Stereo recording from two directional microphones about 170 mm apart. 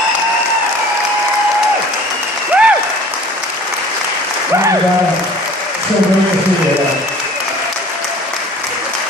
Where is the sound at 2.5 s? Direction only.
10° right (ahead or behind).